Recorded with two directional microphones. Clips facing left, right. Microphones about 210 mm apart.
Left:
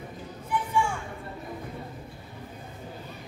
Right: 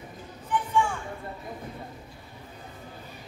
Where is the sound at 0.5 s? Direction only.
10° left (ahead or behind).